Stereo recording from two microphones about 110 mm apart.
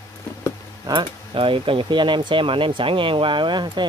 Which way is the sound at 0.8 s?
50° right (ahead or behind).